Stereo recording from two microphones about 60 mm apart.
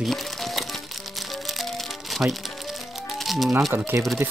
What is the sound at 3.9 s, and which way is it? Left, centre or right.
Speech, right.